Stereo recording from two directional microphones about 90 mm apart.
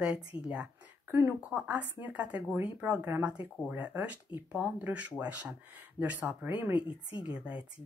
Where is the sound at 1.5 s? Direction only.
15° right (ahead or behind).